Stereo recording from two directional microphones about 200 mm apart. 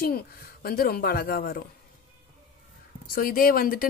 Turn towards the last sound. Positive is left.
turn(degrees=45)  # may be behind; listen again after turning